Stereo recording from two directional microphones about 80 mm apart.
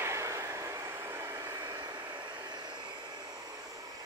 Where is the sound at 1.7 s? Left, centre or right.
Right.